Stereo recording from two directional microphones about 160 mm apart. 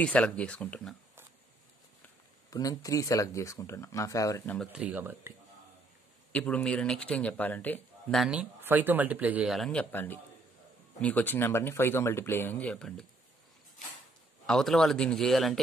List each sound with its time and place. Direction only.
0.0 s speech: 5° left (ahead or behind)
2.5 s speech: 20° left (ahead or behind)
4.7 s speech: 10° right (ahead or behind)
6.3 s speech: 5° left (ahead or behind)
8.2 s speech: 5° right (ahead or behind)
14.4 s speech: 5° left (ahead or behind)